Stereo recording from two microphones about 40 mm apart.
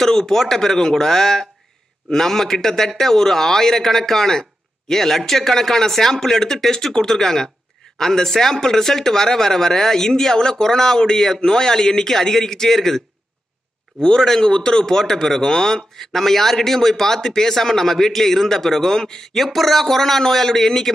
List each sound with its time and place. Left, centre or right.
0.0 s a man's voice: centre
14.0 s a man's voice: centre
19.3 s a man's voice: centre